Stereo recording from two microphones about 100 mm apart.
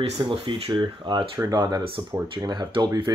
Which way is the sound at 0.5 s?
90° right.